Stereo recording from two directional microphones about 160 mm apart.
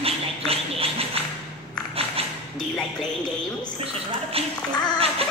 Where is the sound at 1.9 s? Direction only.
35° right (ahead or behind).